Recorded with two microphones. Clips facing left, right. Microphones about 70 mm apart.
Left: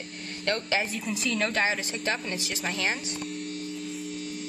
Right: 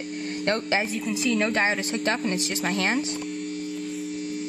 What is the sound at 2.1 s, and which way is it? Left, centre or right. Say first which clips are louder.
Speech: right 4 dB; right.